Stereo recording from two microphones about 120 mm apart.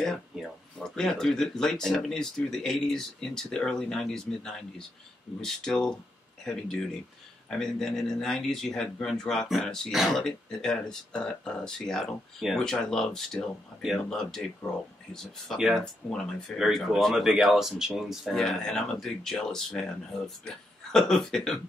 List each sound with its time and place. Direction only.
0.0 s speech: 5° left (ahead or behind)